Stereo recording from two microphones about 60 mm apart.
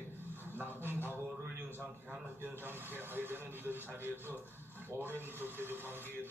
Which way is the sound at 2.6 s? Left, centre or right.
Right.